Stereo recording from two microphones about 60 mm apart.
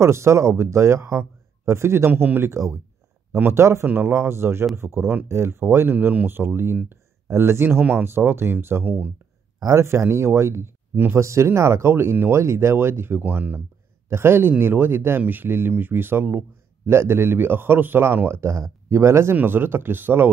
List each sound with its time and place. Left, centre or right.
0.0 s speech: right
2.5 s speech: right
3.8 s speech: right
5.9 s a man's voice: right
9.6 s speech: right
14.0 s a man's voice: right
18.3 s speech: right
19.3 s a man's voice: right